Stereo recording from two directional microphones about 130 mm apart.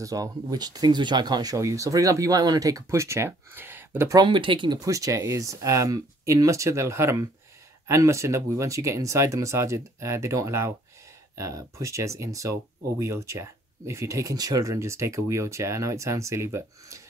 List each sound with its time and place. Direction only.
0.0 s speech: 25° right (ahead or behind)
4.1 s speech: 35° right (ahead or behind)
4.7 s speech: 25° right (ahead or behind)